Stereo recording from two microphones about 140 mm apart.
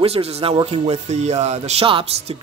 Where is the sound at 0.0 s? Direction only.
45° right (ahead or behind).